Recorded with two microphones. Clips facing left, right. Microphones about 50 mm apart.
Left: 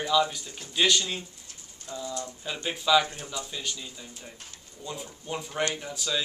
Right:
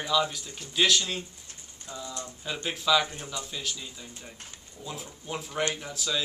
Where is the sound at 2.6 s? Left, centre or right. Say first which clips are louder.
Left 2 dB; centre.